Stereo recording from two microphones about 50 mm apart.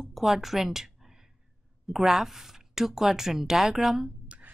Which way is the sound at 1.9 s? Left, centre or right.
Centre.